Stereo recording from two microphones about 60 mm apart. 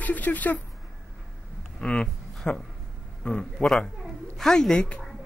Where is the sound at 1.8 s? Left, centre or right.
Centre.